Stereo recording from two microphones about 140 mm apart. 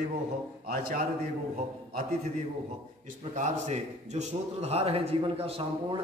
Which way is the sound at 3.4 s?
55° right (ahead or behind).